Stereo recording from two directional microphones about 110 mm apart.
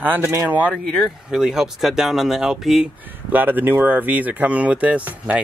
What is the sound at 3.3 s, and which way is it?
Speech, 15° right (ahead or behind).